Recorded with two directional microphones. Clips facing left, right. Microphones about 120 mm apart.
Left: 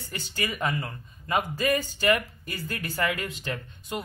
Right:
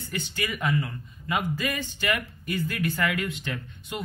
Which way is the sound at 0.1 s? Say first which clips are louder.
Right 1 dB; 35° left (ahead or behind).